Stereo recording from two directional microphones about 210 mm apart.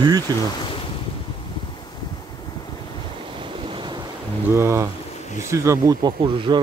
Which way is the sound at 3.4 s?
25° right (ahead or behind).